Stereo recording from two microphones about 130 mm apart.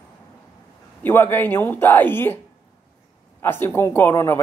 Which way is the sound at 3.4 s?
15° left (ahead or behind).